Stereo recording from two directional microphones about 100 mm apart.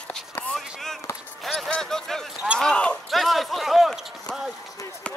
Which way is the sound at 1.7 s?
5° left (ahead or behind).